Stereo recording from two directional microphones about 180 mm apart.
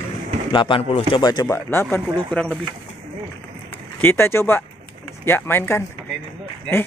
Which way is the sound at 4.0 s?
10° left (ahead or behind).